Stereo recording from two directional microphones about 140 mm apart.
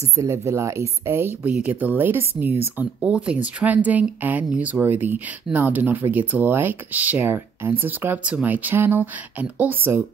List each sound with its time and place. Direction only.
0.1 s speech: 20° right (ahead or behind)